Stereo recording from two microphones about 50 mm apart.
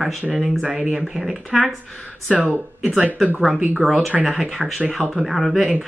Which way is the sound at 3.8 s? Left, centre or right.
Centre.